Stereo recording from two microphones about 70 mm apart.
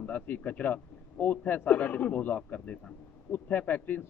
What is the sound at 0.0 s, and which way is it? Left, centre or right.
A man's voice, left.